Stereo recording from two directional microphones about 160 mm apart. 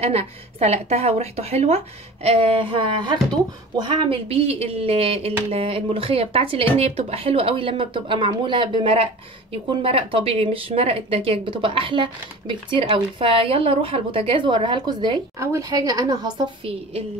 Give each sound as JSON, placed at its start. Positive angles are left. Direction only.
{"t": 0.0, "sound": "speech", "side_deg": -40}